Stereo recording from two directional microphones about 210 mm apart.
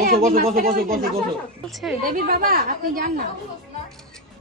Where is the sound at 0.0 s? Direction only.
45° right (ahead or behind).